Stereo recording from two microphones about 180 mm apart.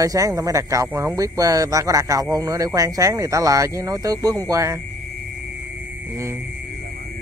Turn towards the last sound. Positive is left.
turn(degrees=-15)  # may be behind; listen again after turning